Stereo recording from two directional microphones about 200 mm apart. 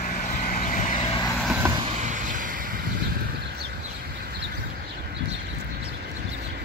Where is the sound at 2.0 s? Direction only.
40° right (ahead or behind).